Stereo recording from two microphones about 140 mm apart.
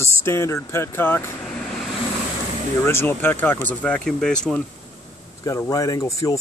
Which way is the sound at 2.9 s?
15° left (ahead or behind).